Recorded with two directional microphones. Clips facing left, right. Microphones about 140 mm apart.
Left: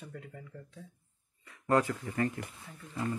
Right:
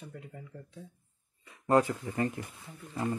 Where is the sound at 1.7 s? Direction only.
25° right (ahead or behind).